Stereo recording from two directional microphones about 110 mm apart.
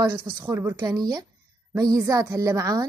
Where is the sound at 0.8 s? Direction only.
35° right (ahead or behind).